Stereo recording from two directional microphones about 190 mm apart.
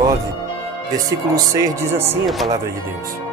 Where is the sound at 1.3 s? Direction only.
15° right (ahead or behind).